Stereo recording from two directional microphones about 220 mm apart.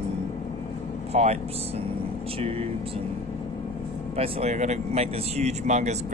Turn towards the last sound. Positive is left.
turn(degrees=-30)  # may be behind; listen again after turning